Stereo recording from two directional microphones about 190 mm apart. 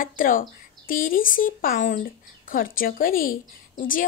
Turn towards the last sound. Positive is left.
turn(degrees=45)  # may be behind; listen again after turning